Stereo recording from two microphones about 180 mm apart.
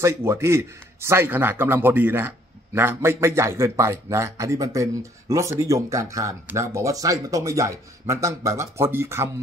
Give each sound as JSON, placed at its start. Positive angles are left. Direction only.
{"t": 0.0, "sound": "a man's voice", "side_deg": -15}